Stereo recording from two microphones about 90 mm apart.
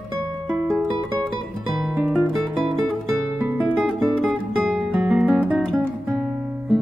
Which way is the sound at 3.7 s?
5° right (ahead or behind).